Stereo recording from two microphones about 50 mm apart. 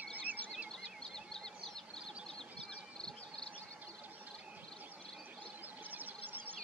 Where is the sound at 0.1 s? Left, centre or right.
Right.